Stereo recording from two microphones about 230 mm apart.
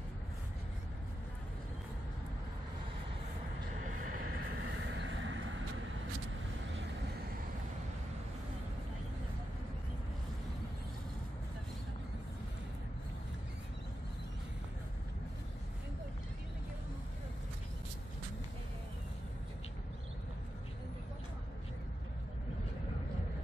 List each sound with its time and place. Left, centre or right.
4.7 s vehicle: right